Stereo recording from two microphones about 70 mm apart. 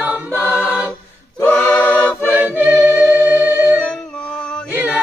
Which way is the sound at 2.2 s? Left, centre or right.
Right.